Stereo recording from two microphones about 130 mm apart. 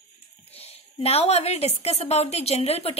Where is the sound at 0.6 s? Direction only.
50° left (ahead or behind).